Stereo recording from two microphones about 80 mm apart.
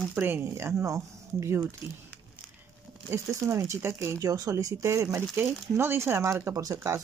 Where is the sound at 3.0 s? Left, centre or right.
Right.